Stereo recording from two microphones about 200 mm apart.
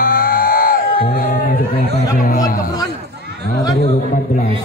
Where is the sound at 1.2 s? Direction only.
40° left (ahead or behind).